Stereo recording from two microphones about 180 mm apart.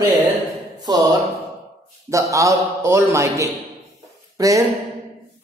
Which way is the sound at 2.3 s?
15° right (ahead or behind).